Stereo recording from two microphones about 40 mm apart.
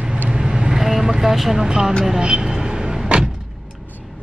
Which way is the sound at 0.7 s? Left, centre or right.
Centre.